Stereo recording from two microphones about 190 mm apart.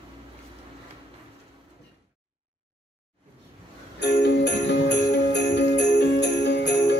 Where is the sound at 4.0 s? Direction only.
60° left (ahead or behind).